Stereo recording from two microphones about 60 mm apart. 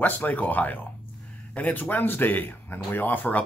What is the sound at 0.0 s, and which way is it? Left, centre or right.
Speech, left.